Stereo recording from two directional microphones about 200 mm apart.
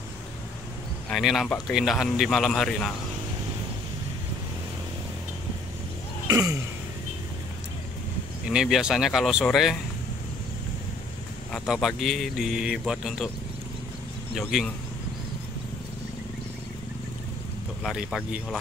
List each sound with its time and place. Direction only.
1.0 s speech: centre (ahead or behind)
6.2 s throat clearing: 15° right (ahead or behind)
8.5 s speech: 5° right (ahead or behind)
11.5 s speech: centre (ahead or behind)
17.8 s speech: centre (ahead or behind)